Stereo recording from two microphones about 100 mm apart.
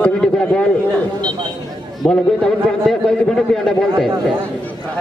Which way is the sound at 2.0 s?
5° left (ahead or behind).